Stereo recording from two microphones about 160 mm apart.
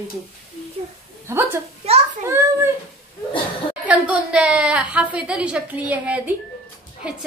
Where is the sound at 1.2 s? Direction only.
15° right (ahead or behind).